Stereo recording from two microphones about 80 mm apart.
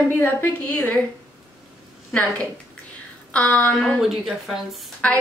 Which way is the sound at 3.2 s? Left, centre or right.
Centre.